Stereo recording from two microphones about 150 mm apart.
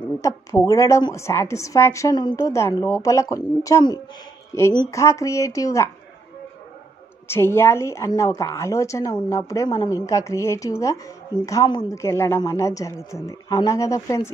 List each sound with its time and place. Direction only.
0.2 s a woman's voice: 20° left (ahead or behind)
7.2 s a woman's voice: 15° left (ahead or behind)